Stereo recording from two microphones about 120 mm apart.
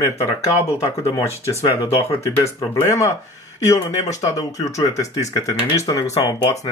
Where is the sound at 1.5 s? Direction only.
55° left (ahead or behind).